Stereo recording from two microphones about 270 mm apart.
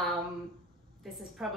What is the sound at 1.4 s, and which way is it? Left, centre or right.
Speech, centre.